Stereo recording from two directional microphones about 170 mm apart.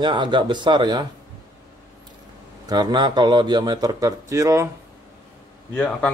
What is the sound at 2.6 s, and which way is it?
Speech, 25° right (ahead or behind).